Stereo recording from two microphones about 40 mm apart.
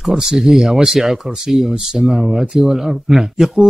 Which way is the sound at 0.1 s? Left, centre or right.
Centre.